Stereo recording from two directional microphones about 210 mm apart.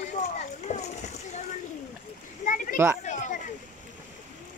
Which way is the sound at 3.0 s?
35° left (ahead or behind).